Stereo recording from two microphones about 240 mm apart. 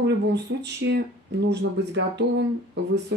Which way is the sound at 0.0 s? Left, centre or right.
Right.